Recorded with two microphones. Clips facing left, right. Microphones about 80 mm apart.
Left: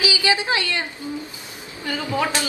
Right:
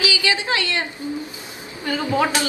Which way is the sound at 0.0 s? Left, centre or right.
Left.